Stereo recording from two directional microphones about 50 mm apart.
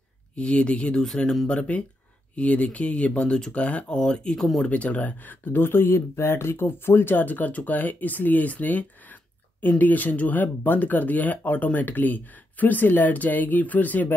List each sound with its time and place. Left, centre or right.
0.4 s speech: left
4.6 s speech: left